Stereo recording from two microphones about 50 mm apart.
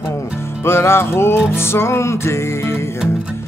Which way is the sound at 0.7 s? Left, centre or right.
Left.